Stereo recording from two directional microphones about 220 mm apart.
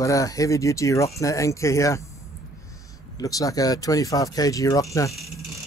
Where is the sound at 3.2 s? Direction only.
15° left (ahead or behind).